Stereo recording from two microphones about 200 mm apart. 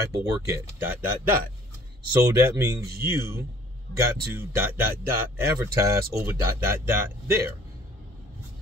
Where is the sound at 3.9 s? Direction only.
15° right (ahead or behind).